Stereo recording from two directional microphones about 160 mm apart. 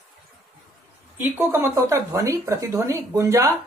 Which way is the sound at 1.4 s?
15° right (ahead or behind).